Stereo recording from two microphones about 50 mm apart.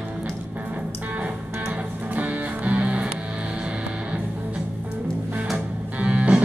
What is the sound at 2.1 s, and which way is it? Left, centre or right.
Music, right.